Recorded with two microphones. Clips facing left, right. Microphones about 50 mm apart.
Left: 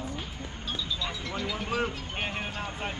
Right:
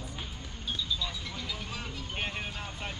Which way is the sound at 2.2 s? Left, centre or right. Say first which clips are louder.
Left 3 dB; centre.